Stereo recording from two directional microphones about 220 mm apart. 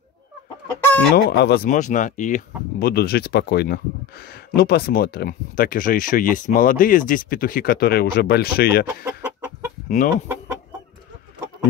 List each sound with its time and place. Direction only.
1.1 s speech: 45° left (ahead or behind)
9.0 s chicken: 15° right (ahead or behind)
9.8 s chicken: 35° left (ahead or behind)